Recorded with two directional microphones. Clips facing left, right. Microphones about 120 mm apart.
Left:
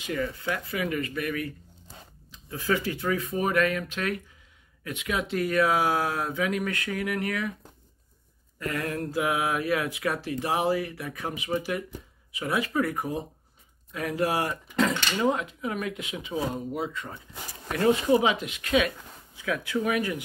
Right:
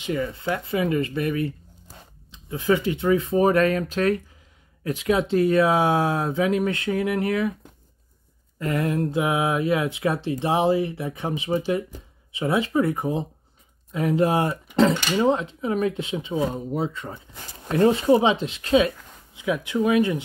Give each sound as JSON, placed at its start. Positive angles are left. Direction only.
{"t": 0.0, "sound": "speech", "side_deg": -25}
{"t": 8.5, "sound": "speech", "side_deg": -25}